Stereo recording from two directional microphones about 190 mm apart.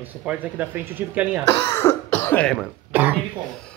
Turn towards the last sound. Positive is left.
turn(degrees=5)  # may be behind; listen again after turning